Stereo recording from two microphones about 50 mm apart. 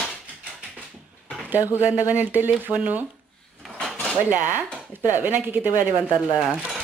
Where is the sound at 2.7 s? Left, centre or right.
Right.